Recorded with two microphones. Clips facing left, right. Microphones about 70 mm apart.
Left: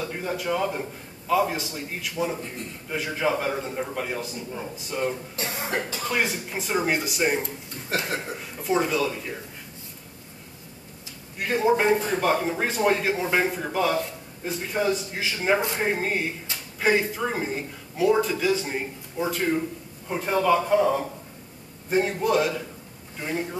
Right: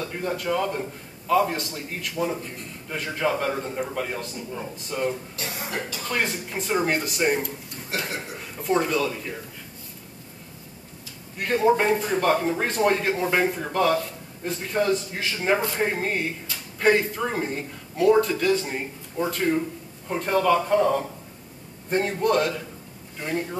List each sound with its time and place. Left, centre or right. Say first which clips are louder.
0.0 s a man's voice: right 1 dB; centre
5.3 s speech: left 3 dB; left
6.0 s speech: right 1 dB; centre
11.3 s a man's voice: right 1 dB; centre